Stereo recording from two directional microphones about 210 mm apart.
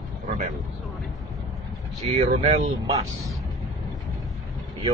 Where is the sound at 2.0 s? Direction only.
30° right (ahead or behind).